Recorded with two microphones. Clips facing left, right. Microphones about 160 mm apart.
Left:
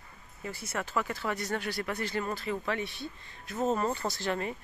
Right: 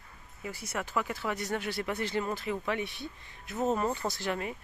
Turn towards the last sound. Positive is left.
turn(degrees=-10)  # may be behind; listen again after turning